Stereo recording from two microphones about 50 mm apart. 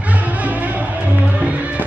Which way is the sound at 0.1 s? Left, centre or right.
Right.